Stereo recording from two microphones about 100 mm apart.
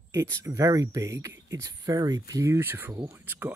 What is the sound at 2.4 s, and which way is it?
Speech, 20° right (ahead or behind).